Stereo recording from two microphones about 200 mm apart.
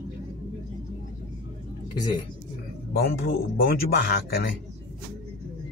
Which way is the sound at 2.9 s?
50° left (ahead or behind).